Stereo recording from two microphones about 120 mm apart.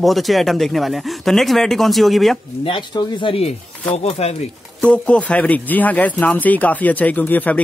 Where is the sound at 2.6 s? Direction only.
45° left (ahead or behind); by 4.4 s 60° left (ahead or behind).